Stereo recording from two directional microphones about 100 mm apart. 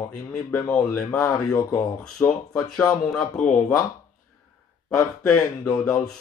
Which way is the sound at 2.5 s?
10° left (ahead or behind).